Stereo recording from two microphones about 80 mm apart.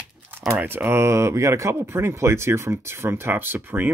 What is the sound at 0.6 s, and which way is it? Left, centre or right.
Speech, right.